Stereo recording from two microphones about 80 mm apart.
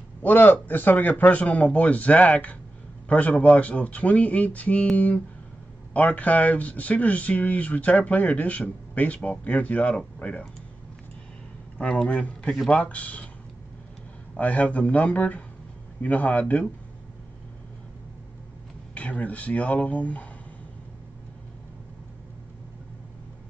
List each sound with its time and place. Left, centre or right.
0.2 s speech: left
11.8 s a man's voice: centre
14.3 s a man's voice: centre
18.9 s speech: centre